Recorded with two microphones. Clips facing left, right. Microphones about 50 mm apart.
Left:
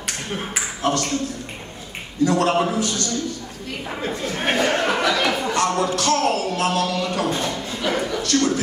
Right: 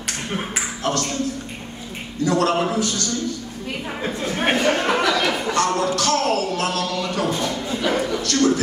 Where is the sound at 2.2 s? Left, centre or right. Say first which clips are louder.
Even; centre.